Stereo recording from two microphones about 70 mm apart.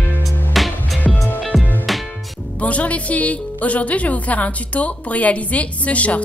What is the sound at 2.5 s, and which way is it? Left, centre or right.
Speech, centre.